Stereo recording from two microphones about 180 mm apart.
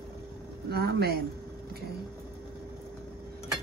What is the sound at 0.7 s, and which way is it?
Speech, 60° right (ahead or behind).